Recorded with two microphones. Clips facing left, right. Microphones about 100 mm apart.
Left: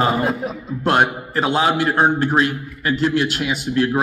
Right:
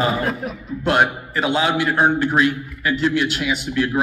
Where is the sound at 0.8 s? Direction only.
40° left (ahead or behind).